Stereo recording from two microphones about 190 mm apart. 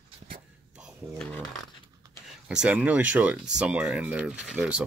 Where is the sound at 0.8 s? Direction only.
5° right (ahead or behind).